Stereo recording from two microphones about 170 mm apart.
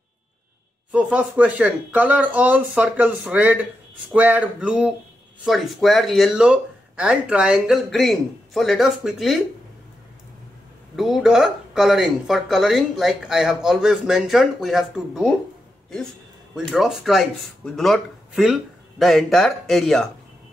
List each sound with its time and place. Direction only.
0.9 s speech: 10° right (ahead or behind)
11.0 s speech: centre (ahead or behind)
16.5 s speech: centre (ahead or behind)